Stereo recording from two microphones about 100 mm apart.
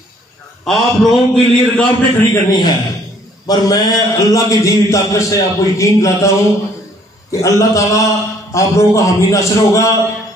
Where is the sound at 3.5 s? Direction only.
35° left (ahead or behind).